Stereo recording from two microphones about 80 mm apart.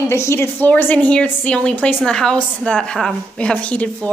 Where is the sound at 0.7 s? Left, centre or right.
Left.